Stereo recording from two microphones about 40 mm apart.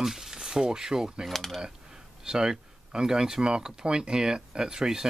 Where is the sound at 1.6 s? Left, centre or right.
Centre.